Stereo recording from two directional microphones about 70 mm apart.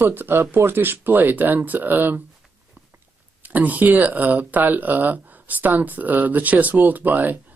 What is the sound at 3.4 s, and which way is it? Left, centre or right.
Speech, right.